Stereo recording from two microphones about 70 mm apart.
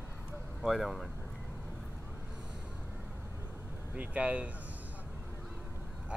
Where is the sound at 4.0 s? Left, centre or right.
Right.